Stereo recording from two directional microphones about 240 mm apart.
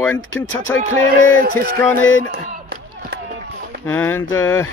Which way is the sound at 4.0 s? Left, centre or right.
Centre.